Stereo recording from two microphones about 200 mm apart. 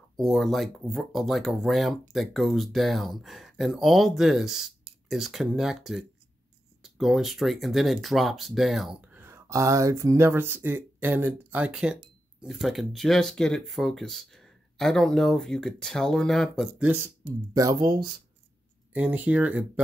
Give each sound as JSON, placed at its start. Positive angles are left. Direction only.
{"t": 0.2, "sound": "speech", "side_deg": 0}
{"t": 17.6, "sound": "speech", "side_deg": -20}
{"t": 18.9, "sound": "speech", "side_deg": -5}